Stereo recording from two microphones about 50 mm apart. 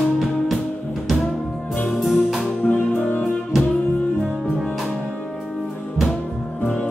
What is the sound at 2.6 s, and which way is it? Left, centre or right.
Music, left.